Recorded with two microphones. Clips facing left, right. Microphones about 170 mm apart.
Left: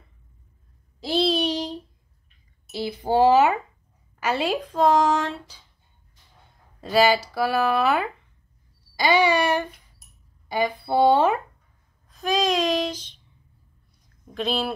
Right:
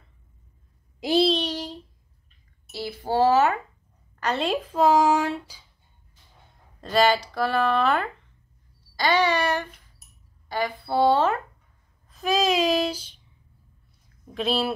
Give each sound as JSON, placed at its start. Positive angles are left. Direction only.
{"t": 1.2, "sound": "child singing", "side_deg": 10}
{"t": 2.7, "sound": "speech", "side_deg": 15}
{"t": 4.2, "sound": "a woman's voice", "side_deg": 5}
{"t": 6.8, "sound": "speech", "side_deg": 5}
{"t": 12.1, "sound": "a woman's voice", "side_deg": -5}
{"t": 14.0, "sound": "a sound", "side_deg": -5}